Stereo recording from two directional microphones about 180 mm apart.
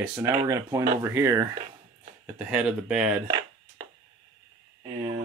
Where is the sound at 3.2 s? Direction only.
25° right (ahead or behind).